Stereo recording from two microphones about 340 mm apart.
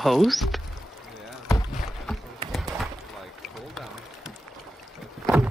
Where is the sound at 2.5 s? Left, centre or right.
Centre.